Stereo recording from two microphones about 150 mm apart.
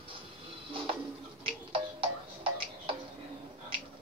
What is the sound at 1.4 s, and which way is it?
Music, 35° right (ahead or behind).